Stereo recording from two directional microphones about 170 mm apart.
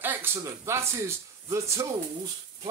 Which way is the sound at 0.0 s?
10° right (ahead or behind).